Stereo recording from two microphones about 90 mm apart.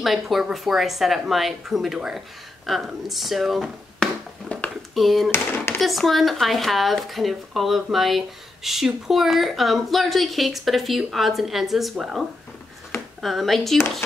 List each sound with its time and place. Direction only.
0.0 s speech: centre (ahead or behind)
4.5 s a sound: 5° left (ahead or behind)
4.9 s speech: centre (ahead or behind)
5.3 s speech: 25° left (ahead or behind)
5.8 s speech: centre (ahead or behind)